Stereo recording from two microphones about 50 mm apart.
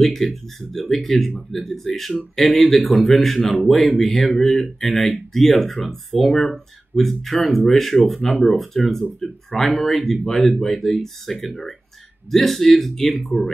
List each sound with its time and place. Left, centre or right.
0.0 s speech: centre
9.0 s speech: left
9.6 s speech: centre
12.3 s speech: centre